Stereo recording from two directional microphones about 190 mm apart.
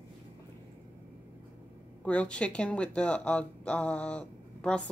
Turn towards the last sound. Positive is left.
turn(degrees=5)  # may be behind; listen again after turning